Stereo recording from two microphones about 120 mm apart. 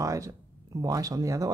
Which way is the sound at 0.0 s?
25° right (ahead or behind).